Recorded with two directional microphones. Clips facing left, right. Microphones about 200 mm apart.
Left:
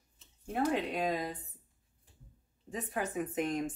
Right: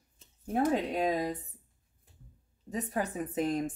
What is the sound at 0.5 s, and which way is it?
Speech, 40° right (ahead or behind).